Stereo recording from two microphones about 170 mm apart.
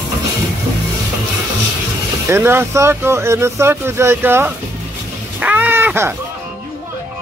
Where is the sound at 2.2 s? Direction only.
15° right (ahead or behind).